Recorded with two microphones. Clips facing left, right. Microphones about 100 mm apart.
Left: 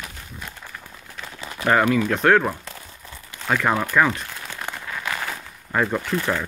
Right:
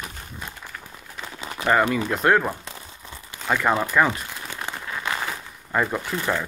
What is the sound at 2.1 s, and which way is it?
Speech, 5° right (ahead or behind).